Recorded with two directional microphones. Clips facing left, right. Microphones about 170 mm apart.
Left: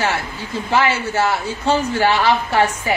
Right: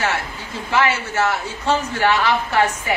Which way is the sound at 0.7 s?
30° left (ahead or behind).